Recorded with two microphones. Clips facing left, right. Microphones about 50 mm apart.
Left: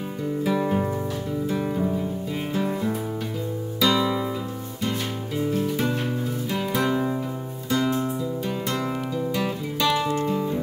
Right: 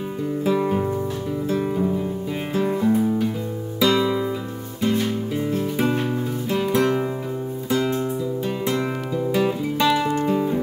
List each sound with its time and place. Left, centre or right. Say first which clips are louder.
0.5 s music: right 3 dB; centre
3.8 s guitar: right 3 dB; centre
5.6 s music: right 3 dB; centre
6.5 s music: right 5 dB; centre